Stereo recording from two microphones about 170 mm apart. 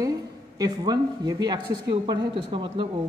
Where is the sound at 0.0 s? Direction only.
20° right (ahead or behind).